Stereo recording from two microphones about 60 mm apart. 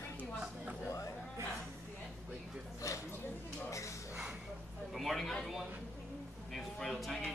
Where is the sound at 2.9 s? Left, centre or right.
Left.